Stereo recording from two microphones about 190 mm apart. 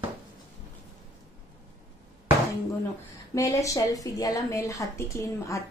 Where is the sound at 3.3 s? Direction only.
15° left (ahead or behind).